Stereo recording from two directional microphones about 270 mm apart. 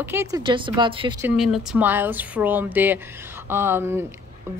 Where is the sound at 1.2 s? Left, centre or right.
Centre.